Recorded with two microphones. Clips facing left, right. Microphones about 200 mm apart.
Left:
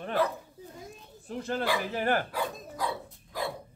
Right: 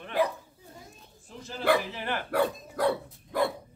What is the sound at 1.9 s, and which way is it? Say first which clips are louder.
Speech: left 6 dB; 45° left (ahead or behind).